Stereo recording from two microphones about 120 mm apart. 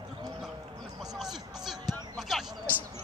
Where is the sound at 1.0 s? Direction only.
5° right (ahead or behind).